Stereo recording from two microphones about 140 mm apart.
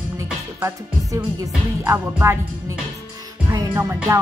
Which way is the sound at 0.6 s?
20° right (ahead or behind).